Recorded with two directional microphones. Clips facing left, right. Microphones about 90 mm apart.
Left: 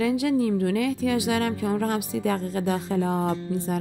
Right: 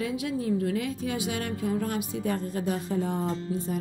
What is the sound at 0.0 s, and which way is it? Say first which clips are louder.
A woman's voice: left 7 dB; 85° left.